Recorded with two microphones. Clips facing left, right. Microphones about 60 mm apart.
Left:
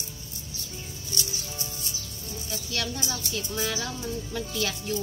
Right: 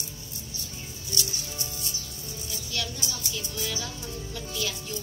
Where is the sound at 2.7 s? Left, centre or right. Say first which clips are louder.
Left 3 dB; left.